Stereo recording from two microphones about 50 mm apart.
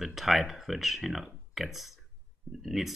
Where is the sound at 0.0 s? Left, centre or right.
Centre.